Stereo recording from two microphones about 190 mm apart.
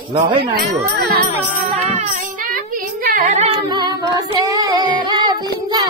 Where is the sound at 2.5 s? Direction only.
50° right (ahead or behind).